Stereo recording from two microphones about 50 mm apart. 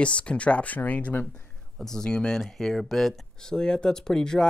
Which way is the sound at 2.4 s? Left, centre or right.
Centre.